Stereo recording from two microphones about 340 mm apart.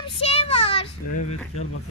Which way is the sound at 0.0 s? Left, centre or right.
Centre.